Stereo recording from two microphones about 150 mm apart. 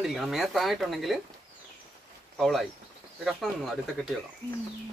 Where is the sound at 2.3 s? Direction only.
Centre (ahead or behind).